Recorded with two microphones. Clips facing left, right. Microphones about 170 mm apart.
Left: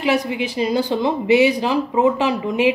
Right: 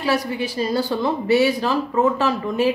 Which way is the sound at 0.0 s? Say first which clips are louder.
Left 2 dB; 20° left (ahead or behind).